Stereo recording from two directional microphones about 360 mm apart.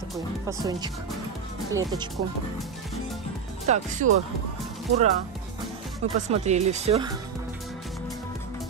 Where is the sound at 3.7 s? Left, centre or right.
Right.